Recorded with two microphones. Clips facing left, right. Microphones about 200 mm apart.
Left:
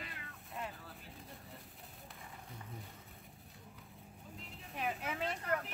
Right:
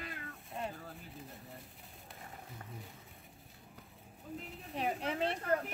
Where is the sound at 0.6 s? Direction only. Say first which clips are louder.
Right 4 dB; 30° right (ahead or behind).